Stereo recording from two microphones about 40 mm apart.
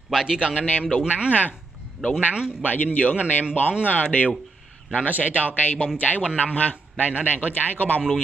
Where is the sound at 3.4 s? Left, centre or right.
Right.